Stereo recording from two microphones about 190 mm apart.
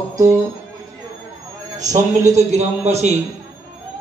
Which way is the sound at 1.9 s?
35° right (ahead or behind).